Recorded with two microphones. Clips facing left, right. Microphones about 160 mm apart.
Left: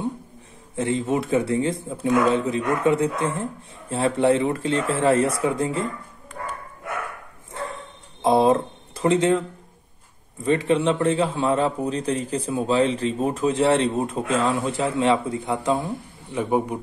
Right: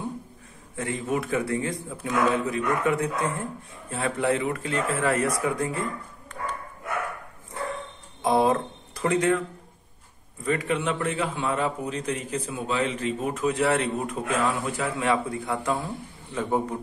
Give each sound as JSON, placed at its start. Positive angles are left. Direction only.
{"t": 0.7, "sound": "a man's voice", "side_deg": 25}
{"t": 8.2, "sound": "a sound", "side_deg": 25}
{"t": 10.4, "sound": "a man's voice", "side_deg": 30}